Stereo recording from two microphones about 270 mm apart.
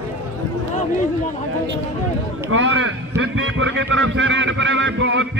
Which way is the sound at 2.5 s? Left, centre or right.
Right.